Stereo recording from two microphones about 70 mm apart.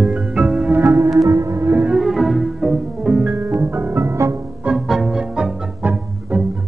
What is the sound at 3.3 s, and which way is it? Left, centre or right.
Music, right.